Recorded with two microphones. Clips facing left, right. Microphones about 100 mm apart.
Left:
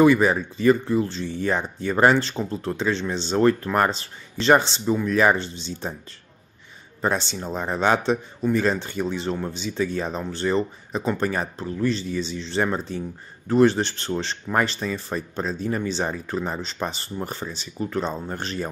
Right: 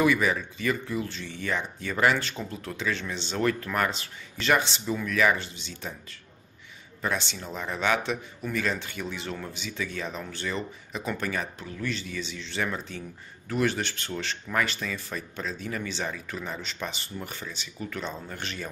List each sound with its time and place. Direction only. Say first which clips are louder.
0.0 s speech: left 7 dB; 35° left (ahead or behind)
7.0 s speech: left 6 dB; 35° left (ahead or behind)